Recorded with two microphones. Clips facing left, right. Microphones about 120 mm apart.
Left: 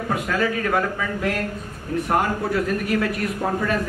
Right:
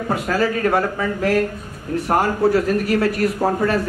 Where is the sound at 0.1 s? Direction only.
35° right (ahead or behind).